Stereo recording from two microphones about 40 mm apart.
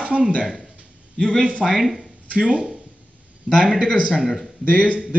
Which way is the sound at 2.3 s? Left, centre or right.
Right.